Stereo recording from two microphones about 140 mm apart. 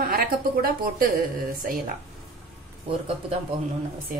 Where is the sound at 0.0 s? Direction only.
90° right.